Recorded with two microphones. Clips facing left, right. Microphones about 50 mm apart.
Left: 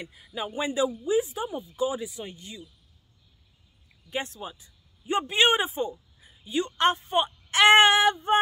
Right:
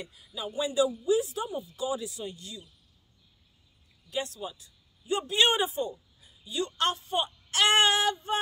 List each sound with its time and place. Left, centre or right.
0.0 s speech: left
4.1 s speech: left